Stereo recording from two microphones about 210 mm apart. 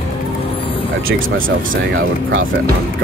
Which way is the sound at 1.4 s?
70° right (ahead or behind).